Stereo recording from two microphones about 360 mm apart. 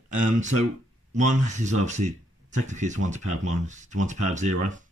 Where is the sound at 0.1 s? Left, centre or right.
Right.